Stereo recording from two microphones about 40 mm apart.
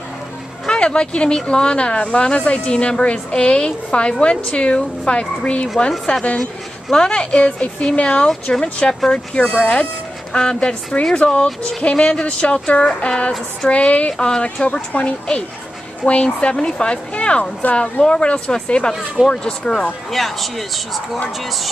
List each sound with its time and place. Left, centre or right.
0.7 s speech: left
6.3 s speech: centre; by 18.0 s left
18.0 s speech: left
20.1 s speech: centre